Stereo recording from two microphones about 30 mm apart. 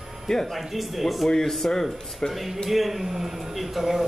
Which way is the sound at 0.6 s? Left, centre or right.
Centre.